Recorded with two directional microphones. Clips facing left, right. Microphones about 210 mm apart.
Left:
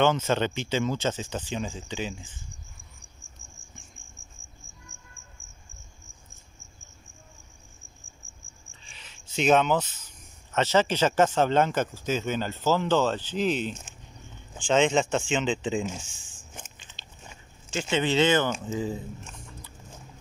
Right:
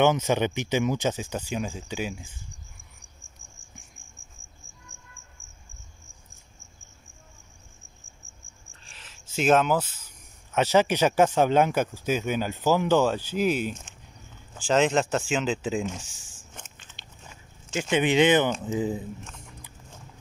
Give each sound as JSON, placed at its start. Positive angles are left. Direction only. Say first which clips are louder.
{"t": 0.0, "sound": "speech", "louder": "right 2 dB", "side_deg": -15}
{"t": 8.7, "sound": "a sound", "louder": "right 1 dB", "side_deg": 0}
{"t": 10.5, "sound": "speech", "louder": "right 2 dB", "side_deg": -10}
{"t": 16.5, "sound": "biting", "louder": "left 1 dB", "side_deg": 10}
{"t": 17.8, "sound": "speech", "louder": "right 3 dB", "side_deg": -15}